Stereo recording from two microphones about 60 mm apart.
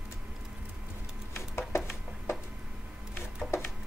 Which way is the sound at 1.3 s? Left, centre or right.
Left.